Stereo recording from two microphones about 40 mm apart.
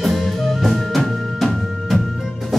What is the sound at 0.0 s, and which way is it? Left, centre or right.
Music, centre.